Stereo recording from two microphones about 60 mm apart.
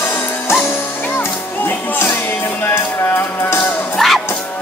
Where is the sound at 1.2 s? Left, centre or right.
Left.